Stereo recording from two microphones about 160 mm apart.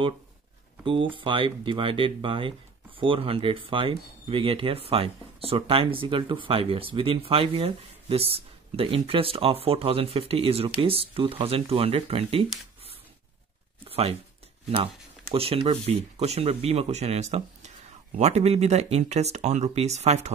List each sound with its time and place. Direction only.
0.8 s speech: 30° right (ahead or behind)
13.8 s a sound: 40° right (ahead or behind)
15.3 s speech: 35° right (ahead or behind)